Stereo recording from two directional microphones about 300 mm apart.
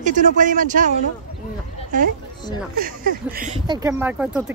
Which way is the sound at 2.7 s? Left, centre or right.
Right.